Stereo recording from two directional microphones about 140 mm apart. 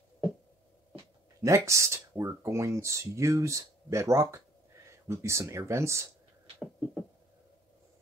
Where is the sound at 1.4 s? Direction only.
20° right (ahead or behind).